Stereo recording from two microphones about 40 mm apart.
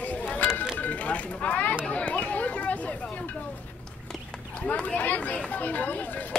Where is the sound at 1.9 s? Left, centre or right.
Left.